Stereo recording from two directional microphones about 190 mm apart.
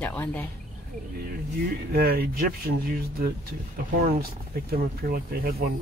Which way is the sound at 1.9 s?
55° right (ahead or behind).